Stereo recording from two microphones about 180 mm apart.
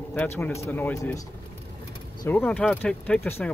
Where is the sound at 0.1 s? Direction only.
10° left (ahead or behind).